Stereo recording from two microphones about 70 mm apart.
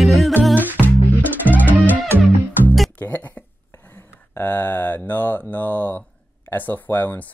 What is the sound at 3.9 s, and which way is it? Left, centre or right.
Mantra, left.